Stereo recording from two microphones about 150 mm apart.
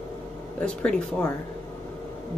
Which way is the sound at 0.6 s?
5° left (ahead or behind).